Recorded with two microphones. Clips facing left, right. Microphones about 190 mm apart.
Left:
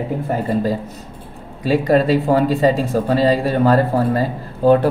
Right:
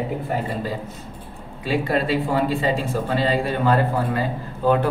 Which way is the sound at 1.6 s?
40° left (ahead or behind).